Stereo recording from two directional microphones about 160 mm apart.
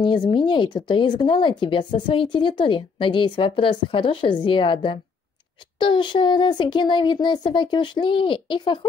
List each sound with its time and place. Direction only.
0.0 s a woman's voice: 30° left (ahead or behind)